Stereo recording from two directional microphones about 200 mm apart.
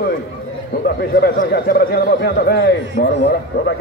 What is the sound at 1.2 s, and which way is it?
A man's voice, 50° left (ahead or behind).